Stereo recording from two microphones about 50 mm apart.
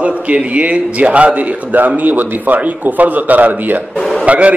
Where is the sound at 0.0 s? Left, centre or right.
Right.